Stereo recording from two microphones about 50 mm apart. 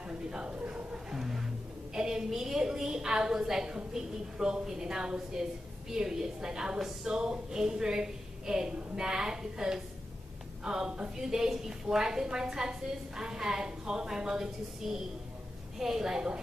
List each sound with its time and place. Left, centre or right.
0.3 s speech: centre
0.7 s music: right
1.1 s music: centre
2.0 s a woman's voice: centre